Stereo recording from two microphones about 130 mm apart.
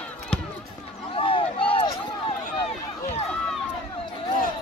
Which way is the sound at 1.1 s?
45° left (ahead or behind).